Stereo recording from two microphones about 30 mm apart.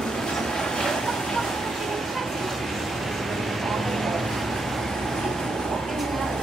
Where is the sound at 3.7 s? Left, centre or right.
Centre.